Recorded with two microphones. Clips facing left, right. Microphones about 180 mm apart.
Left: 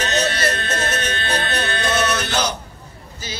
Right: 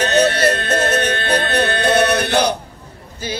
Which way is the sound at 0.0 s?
60° right (ahead or behind).